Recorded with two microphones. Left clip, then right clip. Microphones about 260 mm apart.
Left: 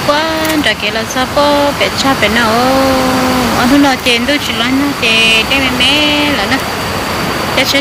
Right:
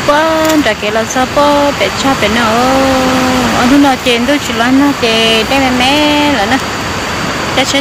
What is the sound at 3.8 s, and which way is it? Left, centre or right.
Speech, centre.